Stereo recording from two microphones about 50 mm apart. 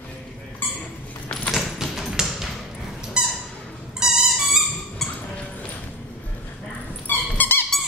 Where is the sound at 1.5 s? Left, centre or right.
Centre.